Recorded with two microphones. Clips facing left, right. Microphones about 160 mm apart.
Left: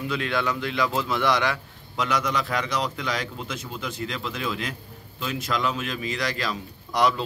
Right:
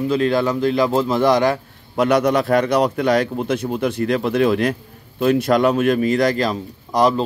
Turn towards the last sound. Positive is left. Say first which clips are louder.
# right 6 dB
turn(degrees=-45)  # may be behind; listen again after turning